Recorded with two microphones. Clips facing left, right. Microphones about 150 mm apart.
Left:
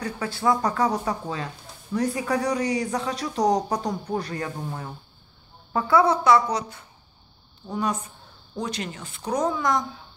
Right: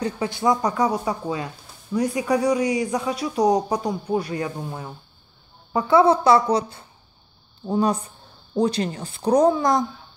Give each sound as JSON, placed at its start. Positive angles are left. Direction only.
{"t": 0.0, "sound": "a man's voice", "side_deg": -20}